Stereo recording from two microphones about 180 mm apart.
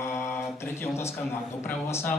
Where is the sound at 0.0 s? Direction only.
15° left (ahead or behind).